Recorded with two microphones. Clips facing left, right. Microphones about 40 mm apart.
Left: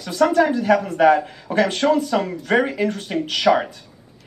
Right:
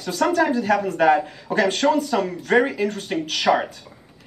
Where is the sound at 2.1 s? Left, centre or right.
Left.